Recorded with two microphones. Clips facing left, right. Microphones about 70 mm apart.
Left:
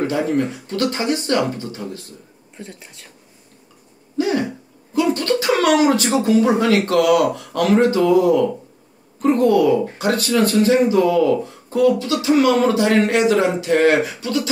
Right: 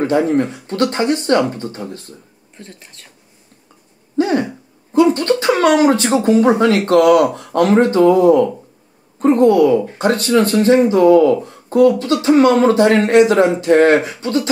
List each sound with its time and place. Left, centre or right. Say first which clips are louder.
0.0 s speech: right 4 dB; right
2.5 s speech: left 2 dB; centre
4.2 s a sound: right 4 dB; right
4.9 s speech: right 5 dB; right